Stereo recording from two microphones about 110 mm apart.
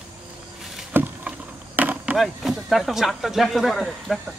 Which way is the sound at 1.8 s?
15° right (ahead or behind).